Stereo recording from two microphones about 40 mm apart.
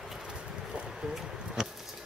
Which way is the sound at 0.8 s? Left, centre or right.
Centre.